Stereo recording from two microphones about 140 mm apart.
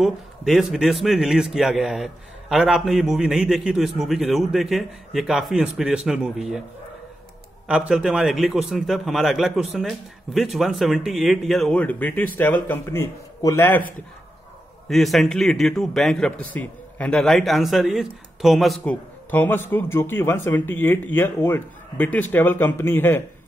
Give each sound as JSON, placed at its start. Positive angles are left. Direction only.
{"t": 0.0, "sound": "a man's voice", "side_deg": 0}
{"t": 7.6, "sound": "a man's voice", "side_deg": -5}
{"t": 14.9, "sound": "a man's voice", "side_deg": 0}
{"t": 19.3, "sound": "speech", "side_deg": 15}